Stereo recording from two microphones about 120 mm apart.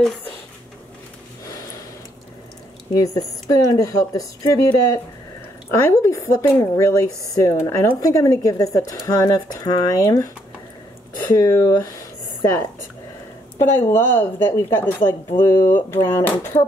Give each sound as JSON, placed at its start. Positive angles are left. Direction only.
{"t": 2.9, "sound": "speech", "side_deg": 30}